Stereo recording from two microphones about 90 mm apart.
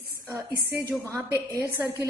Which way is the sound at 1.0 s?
35° right (ahead or behind).